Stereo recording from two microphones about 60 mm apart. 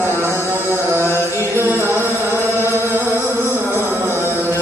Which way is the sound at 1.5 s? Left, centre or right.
Right.